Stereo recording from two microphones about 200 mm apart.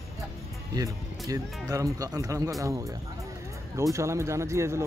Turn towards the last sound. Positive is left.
turn(degrees=-15)  # may be behind; listen again after turning